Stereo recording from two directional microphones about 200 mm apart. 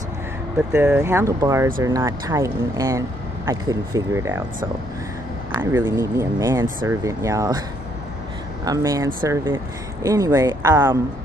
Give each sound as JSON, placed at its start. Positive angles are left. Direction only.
{"t": 0.7, "sound": "speech", "side_deg": -10}
{"t": 5.5, "sound": "speech", "side_deg": -10}
{"t": 8.6, "sound": "speech", "side_deg": -15}